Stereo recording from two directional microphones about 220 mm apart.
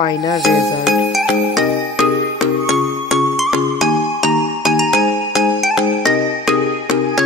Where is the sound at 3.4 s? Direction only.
Centre (ahead or behind).